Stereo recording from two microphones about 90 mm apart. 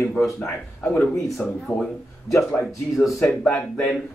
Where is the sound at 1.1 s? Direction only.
5° left (ahead or behind).